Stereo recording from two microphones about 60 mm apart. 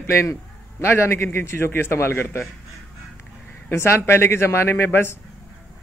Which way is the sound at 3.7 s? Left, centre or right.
Left.